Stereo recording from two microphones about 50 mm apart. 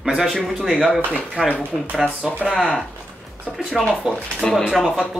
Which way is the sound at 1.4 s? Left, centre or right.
Centre.